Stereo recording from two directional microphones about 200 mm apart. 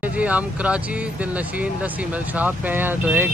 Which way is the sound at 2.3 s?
10° right (ahead or behind).